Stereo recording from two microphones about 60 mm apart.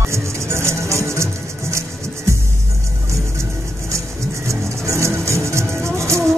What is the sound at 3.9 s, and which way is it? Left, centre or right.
Music, right.